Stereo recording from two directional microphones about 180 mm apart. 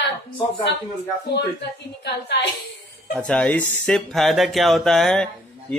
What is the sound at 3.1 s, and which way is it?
Speech, 5° left (ahead or behind).